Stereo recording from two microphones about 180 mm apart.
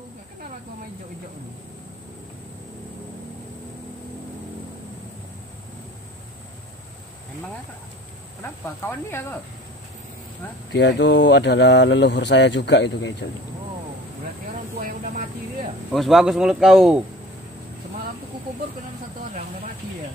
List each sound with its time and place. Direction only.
8.4 s speech: 15° left (ahead or behind)
10.7 s speech: 75° left (ahead or behind)
15.9 s speech: centre (ahead or behind)